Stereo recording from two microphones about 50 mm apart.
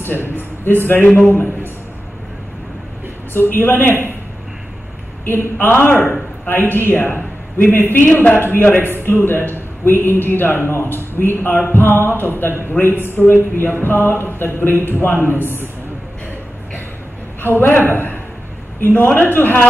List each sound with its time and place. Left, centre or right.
0.0 s a man's voice: left
3.3 s a man's voice: left
5.2 s a man's voice: left
17.4 s a man's voice: left